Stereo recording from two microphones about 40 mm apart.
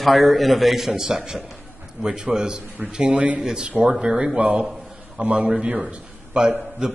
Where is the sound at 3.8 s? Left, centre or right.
Centre; by 5.5 s right.